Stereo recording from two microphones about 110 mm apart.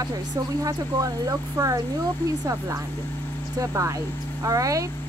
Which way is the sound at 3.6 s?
30° right (ahead or behind).